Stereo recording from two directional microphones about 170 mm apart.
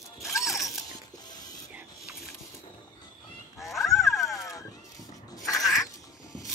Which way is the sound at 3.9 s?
Centre (ahead or behind).